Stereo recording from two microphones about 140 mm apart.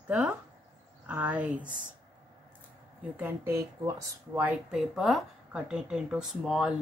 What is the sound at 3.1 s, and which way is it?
Speech, 15° right (ahead or behind).